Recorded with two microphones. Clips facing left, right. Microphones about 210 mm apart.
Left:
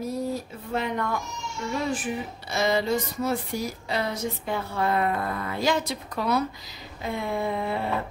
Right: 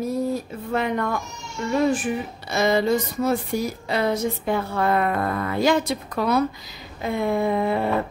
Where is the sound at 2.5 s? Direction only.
55° right (ahead or behind).